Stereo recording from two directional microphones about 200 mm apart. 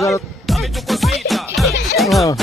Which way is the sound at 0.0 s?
Centre (ahead or behind).